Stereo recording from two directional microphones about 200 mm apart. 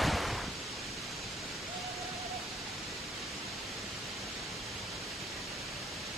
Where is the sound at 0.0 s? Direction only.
Centre (ahead or behind).